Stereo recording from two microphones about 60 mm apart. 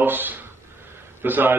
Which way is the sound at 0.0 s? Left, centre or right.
Right.